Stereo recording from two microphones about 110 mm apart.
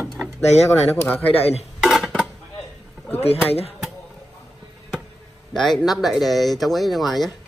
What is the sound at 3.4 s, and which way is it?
Speech, 65° left (ahead or behind).